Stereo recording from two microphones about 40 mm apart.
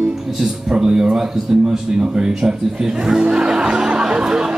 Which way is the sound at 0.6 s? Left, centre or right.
Centre.